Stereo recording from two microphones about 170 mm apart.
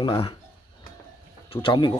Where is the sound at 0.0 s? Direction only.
30° left (ahead or behind).